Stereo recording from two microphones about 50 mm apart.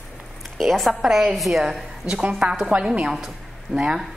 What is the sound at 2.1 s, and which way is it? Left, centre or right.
A woman's voice, right.